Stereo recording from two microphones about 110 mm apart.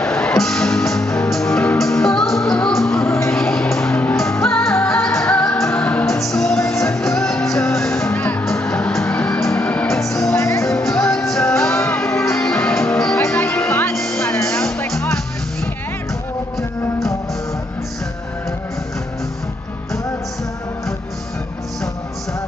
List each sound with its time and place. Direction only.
0.0 s music: 10° left (ahead or behind)
3.1 s music: 20° left (ahead or behind)
3.3 s music: 10° left (ahead or behind)
10.3 s music: 25° left (ahead or behind)
11.0 s music: 5° left (ahead or behind)
11.7 s music: 20° left (ahead or behind)
12.0 s music: 5° left (ahead or behind)
13.3 s music: 15° left (ahead or behind)
13.9 s music: 5° left (ahead or behind)
14.2 s music: 25° left (ahead or behind)